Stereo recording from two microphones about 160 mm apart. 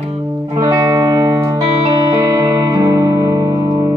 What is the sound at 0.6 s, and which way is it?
Music, 20° right (ahead or behind).